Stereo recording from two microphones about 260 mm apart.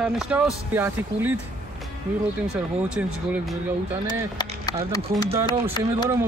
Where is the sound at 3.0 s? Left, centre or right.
Centre.